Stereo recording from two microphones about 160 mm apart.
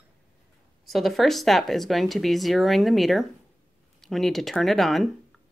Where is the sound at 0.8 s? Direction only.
Centre (ahead or behind).